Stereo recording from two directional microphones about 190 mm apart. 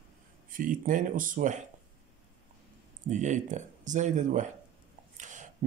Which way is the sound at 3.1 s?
40° right (ahead or behind).